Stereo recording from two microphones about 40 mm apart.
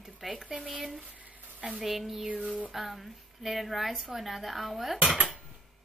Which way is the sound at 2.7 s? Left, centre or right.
Centre.